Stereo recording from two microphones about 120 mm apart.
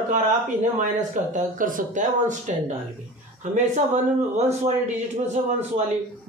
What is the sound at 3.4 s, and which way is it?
Speech, 75° right (ahead or behind).